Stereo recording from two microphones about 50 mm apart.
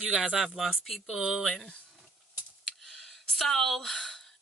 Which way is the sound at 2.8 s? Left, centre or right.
Centre.